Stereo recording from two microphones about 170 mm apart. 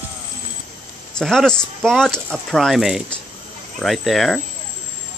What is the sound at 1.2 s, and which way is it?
Speech, 5° left (ahead or behind).